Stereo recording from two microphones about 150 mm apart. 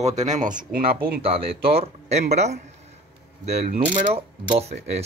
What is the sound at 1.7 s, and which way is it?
Speech, 45° right (ahead or behind).